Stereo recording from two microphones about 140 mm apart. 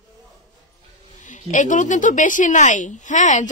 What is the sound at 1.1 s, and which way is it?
A woman's voice, 65° left (ahead or behind).